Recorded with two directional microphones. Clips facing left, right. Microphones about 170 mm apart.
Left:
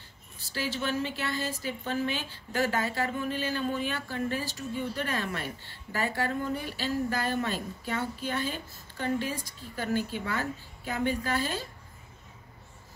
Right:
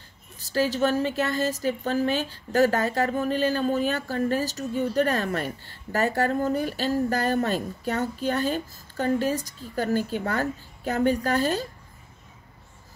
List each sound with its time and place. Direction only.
0.4 s a woman's voice: 40° right (ahead or behind)